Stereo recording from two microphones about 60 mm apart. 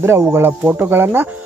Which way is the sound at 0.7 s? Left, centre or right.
Right.